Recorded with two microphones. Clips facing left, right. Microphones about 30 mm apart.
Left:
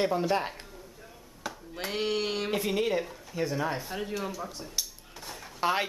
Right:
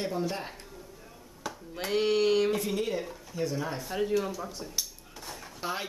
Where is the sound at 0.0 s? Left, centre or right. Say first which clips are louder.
Left 5 dB; left.